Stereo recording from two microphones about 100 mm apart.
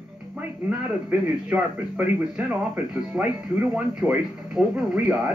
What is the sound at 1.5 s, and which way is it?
Speech, 15° right (ahead or behind).